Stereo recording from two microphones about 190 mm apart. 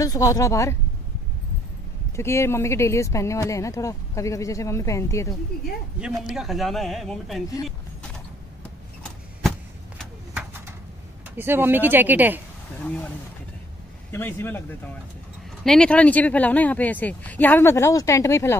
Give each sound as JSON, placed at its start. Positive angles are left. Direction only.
{"t": 0.0, "sound": "speech", "side_deg": 20}
{"t": 2.1, "sound": "speech", "side_deg": 15}
{"t": 6.2, "sound": "speech", "side_deg": 0}
{"t": 11.2, "sound": "speech", "side_deg": -10}
{"t": 12.8, "sound": "speech", "side_deg": 10}
{"t": 14.1, "sound": "speech", "side_deg": 10}
{"t": 15.6, "sound": "speech", "side_deg": 5}